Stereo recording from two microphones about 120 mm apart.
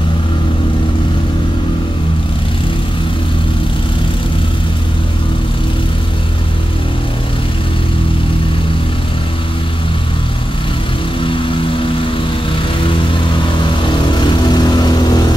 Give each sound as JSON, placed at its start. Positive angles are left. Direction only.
{"t": 11.1, "sound": "vehicle", "side_deg": 45}
{"t": 14.2, "sound": "vehicle", "side_deg": 35}